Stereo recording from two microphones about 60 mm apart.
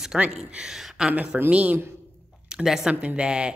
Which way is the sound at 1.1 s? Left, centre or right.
Right.